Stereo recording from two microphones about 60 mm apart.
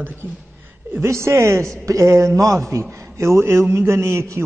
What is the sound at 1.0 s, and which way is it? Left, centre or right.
A man's voice, right.